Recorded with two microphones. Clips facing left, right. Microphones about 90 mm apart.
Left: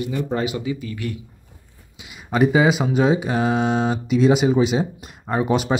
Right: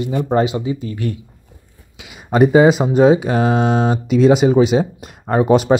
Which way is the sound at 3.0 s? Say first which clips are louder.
Right 7 dB; 60° right (ahead or behind).